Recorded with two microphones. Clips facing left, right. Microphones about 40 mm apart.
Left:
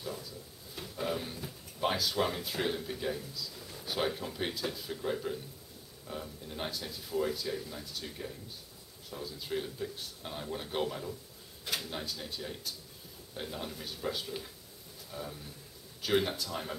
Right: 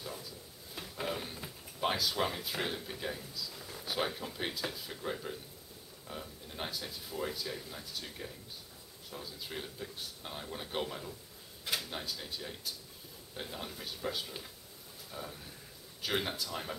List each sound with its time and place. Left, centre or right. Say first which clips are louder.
0.0 s drawer open or close: left 3 dB; centre
1.0 s a sound: left 3 dB; centre
1.8 s speech: left 2 dB; centre